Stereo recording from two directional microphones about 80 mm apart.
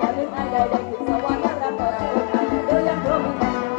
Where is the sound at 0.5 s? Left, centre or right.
Centre.